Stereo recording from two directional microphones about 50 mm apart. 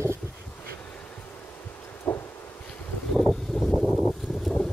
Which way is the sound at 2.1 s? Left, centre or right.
Left.